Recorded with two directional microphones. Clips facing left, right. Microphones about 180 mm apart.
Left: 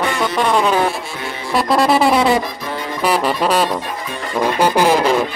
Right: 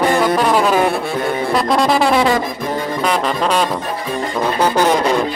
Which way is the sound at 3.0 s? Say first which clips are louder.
Left 3 dB; 5° left (ahead or behind).